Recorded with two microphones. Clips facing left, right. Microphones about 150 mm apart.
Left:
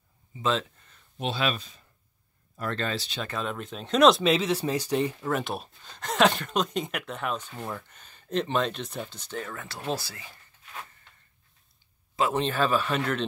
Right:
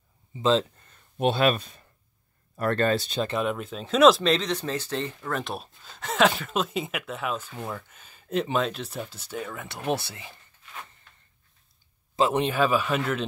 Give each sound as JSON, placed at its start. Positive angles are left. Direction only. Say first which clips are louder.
{"t": 0.4, "sound": "speech", "louder": "right 5 dB", "side_deg": -30}
{"t": 1.1, "sound": "speech", "louder": "right 7 dB", "side_deg": -55}
{"t": 3.2, "sound": "speech", "louder": "right 6 dB", "side_deg": -25}
{"t": 3.4, "sound": "speech", "louder": "right 4 dB", "side_deg": -5}
{"t": 9.7, "sound": "speech", "louder": "right 5 dB", "side_deg": -20}
{"t": 12.2, "sound": "speech", "louder": "right 3 dB", "side_deg": -20}